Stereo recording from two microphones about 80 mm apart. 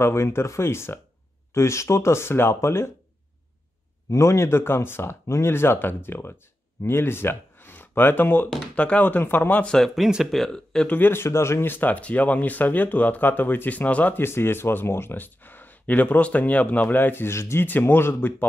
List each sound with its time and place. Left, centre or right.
0.0 s speech: left
4.1 s speech: left; by 9.8 s centre
9.8 s speech: centre
11.0 s speech: left
17.6 s speech: left